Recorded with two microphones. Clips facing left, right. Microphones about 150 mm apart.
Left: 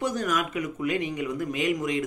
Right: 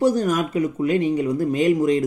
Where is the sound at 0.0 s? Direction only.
35° right (ahead or behind).